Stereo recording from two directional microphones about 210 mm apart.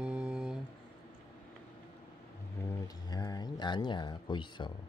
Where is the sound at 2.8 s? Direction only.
20° left (ahead or behind).